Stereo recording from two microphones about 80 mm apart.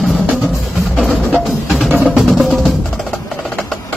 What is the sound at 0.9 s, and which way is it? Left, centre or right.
Music, centre.